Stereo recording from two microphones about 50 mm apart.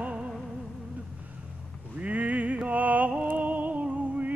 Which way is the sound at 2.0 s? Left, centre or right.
Right.